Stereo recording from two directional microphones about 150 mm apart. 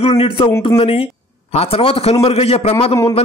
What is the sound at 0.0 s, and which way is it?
A man's voice, 40° left (ahead or behind).